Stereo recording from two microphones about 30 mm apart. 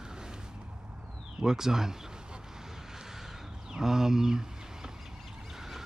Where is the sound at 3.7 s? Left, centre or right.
Centre.